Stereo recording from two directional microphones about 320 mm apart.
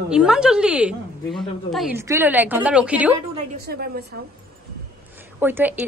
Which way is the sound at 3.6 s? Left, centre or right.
Right.